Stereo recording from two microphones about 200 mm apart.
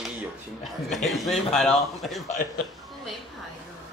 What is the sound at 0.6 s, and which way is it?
A man's voice, centre (ahead or behind).